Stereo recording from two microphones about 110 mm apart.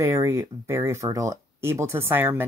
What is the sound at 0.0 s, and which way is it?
Speech, 25° right (ahead or behind).